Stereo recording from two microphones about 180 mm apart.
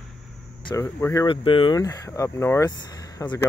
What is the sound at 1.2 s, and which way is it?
Speech, 30° left (ahead or behind).